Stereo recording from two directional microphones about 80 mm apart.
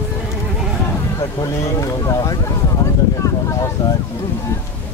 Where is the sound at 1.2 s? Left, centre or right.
Left.